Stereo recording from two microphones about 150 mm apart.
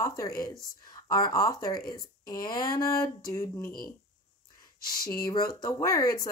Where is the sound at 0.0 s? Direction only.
20° left (ahead or behind).